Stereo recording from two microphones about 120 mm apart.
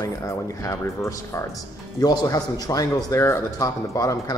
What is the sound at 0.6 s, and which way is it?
Speech, 25° left (ahead or behind).